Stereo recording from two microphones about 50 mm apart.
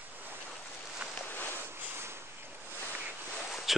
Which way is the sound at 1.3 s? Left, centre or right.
Left.